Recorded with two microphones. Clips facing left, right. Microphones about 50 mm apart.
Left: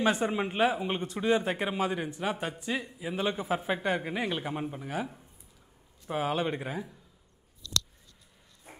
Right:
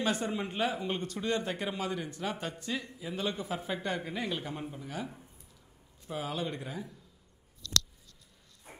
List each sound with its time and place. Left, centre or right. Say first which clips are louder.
0.0 s speech: left 5 dB; left
6.0 s speech: left 6 dB; left